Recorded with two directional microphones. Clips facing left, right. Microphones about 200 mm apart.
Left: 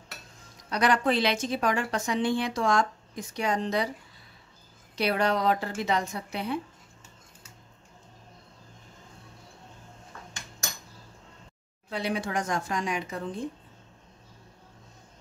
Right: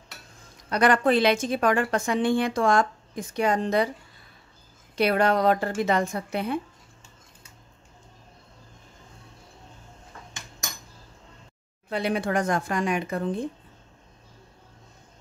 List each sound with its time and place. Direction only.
0.7 s a woman's voice: 55° right (ahead or behind)
4.9 s a woman's voice: 55° right (ahead or behind)
11.9 s speech: 55° right (ahead or behind)